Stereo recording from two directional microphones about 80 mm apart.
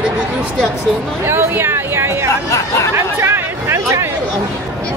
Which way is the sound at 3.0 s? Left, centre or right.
Right.